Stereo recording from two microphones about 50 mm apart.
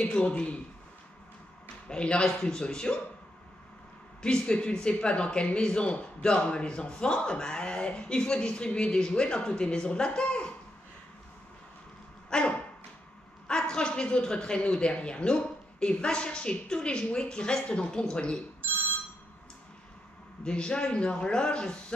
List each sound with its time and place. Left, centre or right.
0.0 s speech: centre
1.9 s a man's voice: centre
4.2 s speech: centre
12.3 s dog: left
13.5 s speech: centre
20.4 s speech: left